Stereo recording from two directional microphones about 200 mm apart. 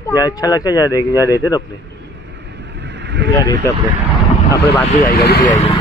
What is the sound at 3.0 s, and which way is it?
Vehicle, 60° right (ahead or behind).